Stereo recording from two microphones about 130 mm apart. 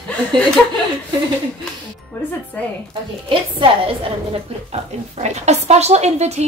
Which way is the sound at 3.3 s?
45° right (ahead or behind).